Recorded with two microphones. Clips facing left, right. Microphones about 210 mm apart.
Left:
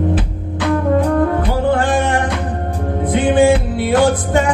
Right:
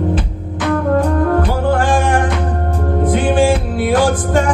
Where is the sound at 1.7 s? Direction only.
20° left (ahead or behind).